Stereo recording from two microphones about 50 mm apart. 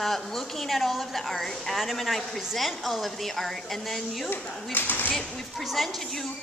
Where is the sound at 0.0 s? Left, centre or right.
Centre.